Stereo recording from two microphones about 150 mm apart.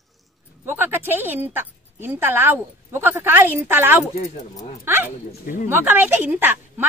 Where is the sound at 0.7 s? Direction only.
15° right (ahead or behind).